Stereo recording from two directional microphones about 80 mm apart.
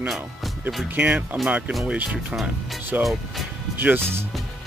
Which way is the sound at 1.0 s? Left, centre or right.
Centre.